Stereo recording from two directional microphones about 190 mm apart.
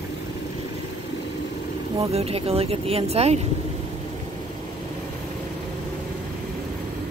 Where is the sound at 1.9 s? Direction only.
35° right (ahead or behind).